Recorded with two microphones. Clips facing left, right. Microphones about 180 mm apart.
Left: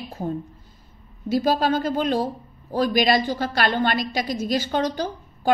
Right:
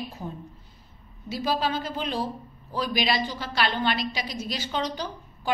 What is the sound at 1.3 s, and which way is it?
A woman's voice, 50° left (ahead or behind).